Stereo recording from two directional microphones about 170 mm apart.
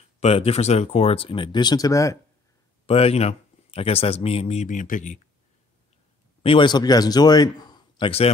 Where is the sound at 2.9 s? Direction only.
35° left (ahead or behind).